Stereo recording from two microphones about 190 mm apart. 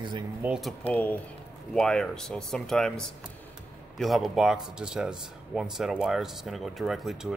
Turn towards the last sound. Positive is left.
turn(degrees=0)  # may be behind; listen again after turning